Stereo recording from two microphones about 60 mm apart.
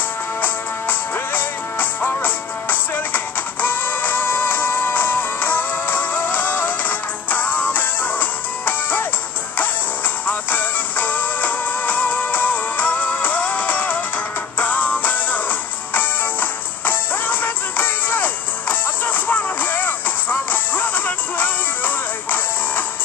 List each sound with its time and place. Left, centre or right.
0.4 s music: left
10.2 s music: left